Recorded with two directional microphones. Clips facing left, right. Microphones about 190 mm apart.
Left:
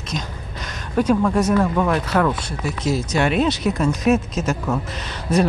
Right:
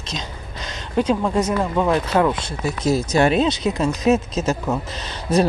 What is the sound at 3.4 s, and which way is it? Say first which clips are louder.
Speech: even; 20° right (ahead or behind).